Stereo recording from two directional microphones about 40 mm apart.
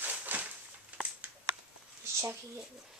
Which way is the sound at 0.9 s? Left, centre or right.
Right.